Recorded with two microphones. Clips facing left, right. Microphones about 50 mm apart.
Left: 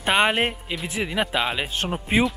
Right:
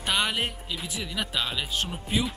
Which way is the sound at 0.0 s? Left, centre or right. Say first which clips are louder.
Left 7 dB; left.